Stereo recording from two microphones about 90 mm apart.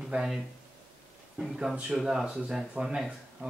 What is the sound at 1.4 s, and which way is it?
Speech, centre (ahead or behind).